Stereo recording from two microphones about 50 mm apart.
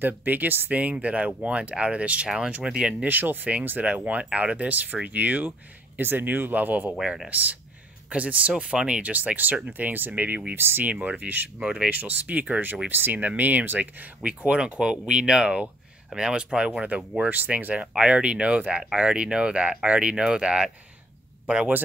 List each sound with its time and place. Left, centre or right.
0.0 s speech: right
0.7 s speech: right
2.2 s speech: centre
3.1 s speech: right
7.0 s speech: centre
7.2 s speech: right
8.6 s speech: centre; by 10.8 s right
10.8 s speech: right
11.6 s speech: centre
11.9 s speech: right
14.6 s speech: centre
17.3 s speech: right; by 20.7 s centre